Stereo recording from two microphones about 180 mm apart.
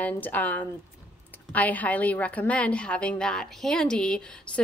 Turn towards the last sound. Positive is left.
turn(degrees=5)  # may be behind; listen again after turning